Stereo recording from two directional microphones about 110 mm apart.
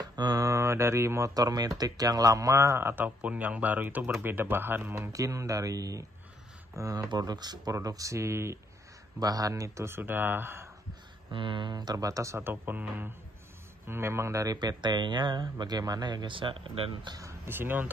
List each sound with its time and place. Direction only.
0.0 s speech: 35° right (ahead or behind); by 10.7 s 20° right (ahead or behind)
11.3 s speech: 50° right (ahead or behind)
17.2 s speech: 25° right (ahead or behind)